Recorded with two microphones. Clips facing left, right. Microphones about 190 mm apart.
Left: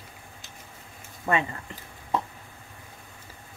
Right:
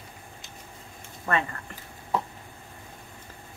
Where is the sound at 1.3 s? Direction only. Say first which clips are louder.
Left 2 dB; 15° left (ahead or behind).